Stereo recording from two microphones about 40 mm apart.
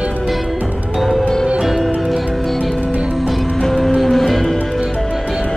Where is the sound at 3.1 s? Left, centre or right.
Centre.